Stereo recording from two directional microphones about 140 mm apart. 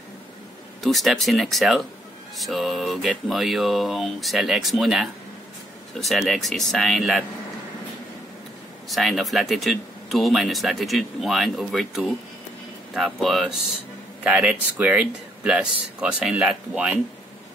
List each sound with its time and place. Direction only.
0.8 s speech: centre (ahead or behind)
8.8 s speech: centre (ahead or behind)